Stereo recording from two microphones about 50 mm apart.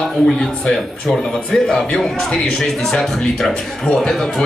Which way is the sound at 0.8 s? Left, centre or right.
Centre.